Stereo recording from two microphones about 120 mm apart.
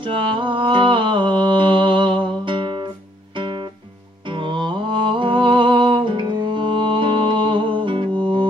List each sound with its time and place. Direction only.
0.0 s mantra: 45° right (ahead or behind)
3.3 s music: 40° right (ahead or behind)